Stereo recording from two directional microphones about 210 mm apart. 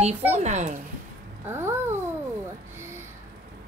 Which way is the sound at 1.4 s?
10° right (ahead or behind).